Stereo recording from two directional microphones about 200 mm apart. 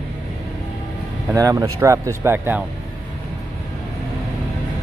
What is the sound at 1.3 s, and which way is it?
Speech, 15° right (ahead or behind).